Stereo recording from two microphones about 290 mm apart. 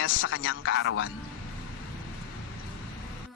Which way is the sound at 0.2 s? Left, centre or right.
Left.